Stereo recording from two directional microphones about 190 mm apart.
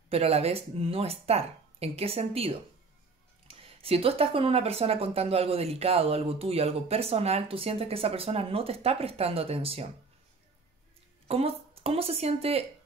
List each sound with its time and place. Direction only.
0.1 s speech: 30° right (ahead or behind)
11.2 s speech: 30° right (ahead or behind)